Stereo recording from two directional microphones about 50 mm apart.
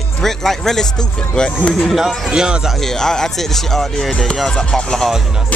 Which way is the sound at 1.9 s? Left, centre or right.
Centre.